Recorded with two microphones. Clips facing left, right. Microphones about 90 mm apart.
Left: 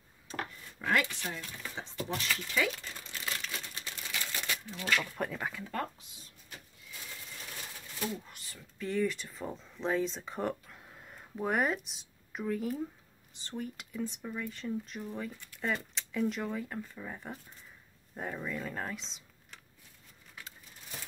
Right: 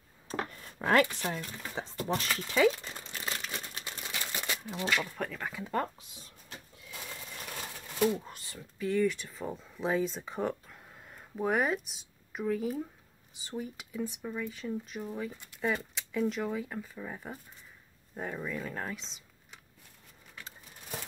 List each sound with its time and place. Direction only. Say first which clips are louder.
0.7 s speech: right 5 dB; 45° right (ahead or behind)
4.0 s a sound: even; 25° right (ahead or behind)
5.1 s speech: left 1 dB; 5° left (ahead or behind)
5.6 s speech: right 7 dB; 20° right (ahead or behind)
8.1 s speech: right 7 dB; 25° right (ahead or behind)
8.7 s speech: right 3 dB; centre (ahead or behind)